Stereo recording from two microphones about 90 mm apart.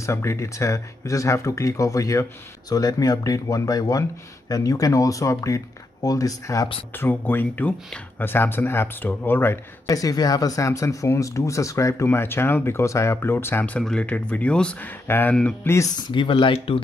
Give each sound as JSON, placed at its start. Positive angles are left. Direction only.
{"t": 0.0, "sound": "speech", "side_deg": 35}
{"t": 6.9, "sound": "speech", "side_deg": 25}
{"t": 9.8, "sound": "speech", "side_deg": 40}
{"t": 12.1, "sound": "speech", "side_deg": 25}
{"t": 13.7, "sound": "speech", "side_deg": 10}
{"t": 16.0, "sound": "speech", "side_deg": 65}